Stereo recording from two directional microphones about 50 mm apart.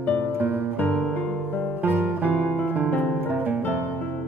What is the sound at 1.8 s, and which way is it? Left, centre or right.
Music, right.